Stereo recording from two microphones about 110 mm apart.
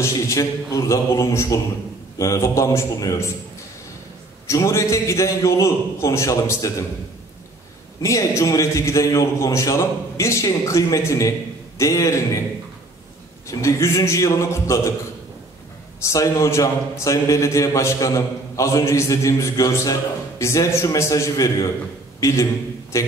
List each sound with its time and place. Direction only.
0.0 s a man's voice: 30° left (ahead or behind)
4.5 s a man's voice: 25° left (ahead or behind)
8.0 s a man's voice: 30° left (ahead or behind)
13.5 s a man's voice: 25° left (ahead or behind)
16.0 s a man's voice: 30° left (ahead or behind)